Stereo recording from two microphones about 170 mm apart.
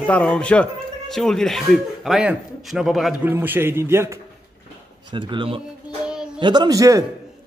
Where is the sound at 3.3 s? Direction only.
10° right (ahead or behind).